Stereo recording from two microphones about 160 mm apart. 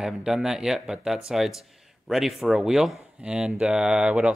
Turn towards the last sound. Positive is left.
turn(degrees=-5)  # may be behind; listen again after turning